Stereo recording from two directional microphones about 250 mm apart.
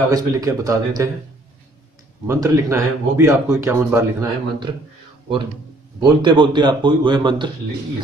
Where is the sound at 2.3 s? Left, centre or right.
Centre.